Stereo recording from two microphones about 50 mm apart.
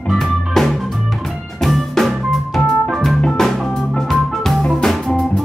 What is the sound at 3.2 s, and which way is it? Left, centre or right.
Music, centre.